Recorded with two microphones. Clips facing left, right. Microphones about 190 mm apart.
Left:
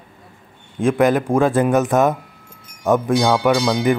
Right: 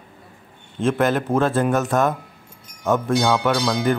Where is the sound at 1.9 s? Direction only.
20° left (ahead or behind).